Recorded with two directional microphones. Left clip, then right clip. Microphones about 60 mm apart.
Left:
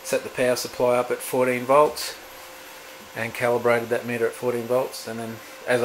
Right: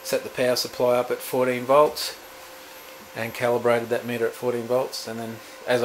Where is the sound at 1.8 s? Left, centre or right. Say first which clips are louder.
Even; centre.